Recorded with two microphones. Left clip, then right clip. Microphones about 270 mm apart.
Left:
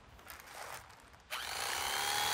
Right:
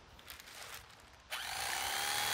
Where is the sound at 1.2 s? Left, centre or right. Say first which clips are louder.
Left 1 dB; centre.